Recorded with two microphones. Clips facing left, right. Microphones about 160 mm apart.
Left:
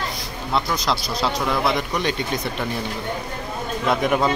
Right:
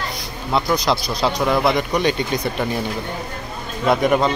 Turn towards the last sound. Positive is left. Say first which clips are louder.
# right 3 dB
turn(degrees=0)  # may be behind; listen again after turning